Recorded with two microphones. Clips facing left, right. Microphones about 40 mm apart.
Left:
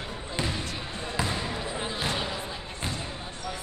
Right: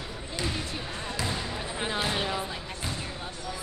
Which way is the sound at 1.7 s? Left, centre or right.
Right.